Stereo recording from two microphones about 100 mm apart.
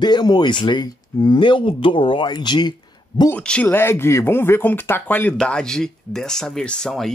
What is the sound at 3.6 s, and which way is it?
Speech, 25° left (ahead or behind).